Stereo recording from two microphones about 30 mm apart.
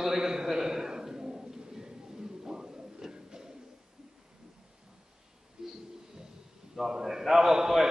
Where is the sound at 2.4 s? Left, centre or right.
Right.